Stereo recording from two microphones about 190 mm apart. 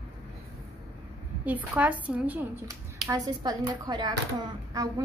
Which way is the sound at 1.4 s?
10° right (ahead or behind).